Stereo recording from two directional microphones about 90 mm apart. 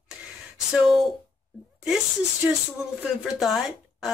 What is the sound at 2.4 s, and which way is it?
Speech, 20° right (ahead or behind).